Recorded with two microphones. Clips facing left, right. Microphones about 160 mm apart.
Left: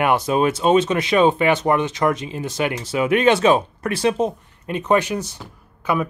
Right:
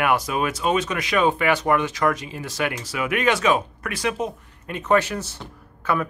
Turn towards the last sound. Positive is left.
turn(degrees=15)  # may be behind; listen again after turning